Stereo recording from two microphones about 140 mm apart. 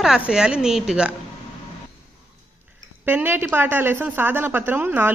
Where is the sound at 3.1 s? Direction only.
15° right (ahead or behind).